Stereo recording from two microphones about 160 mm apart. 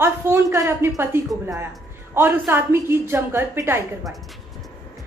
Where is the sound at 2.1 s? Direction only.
15° right (ahead or behind).